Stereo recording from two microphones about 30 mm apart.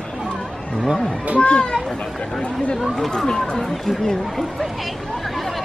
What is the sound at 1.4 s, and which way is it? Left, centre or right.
Speech, left.